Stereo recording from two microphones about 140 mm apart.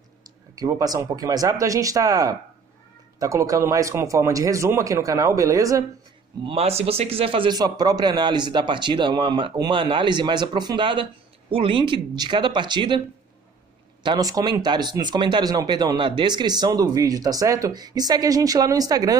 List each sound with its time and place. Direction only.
0.6 s speech: 25° right (ahead or behind)
6.4 s a man's voice: 45° right (ahead or behind)
14.0 s speech: 30° right (ahead or behind)